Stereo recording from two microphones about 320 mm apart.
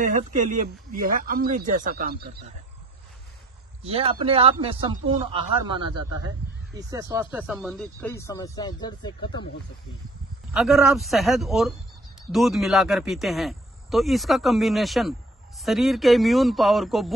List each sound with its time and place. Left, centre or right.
0.0 s speech: right
3.8 s speech: centre
10.5 s speech: centre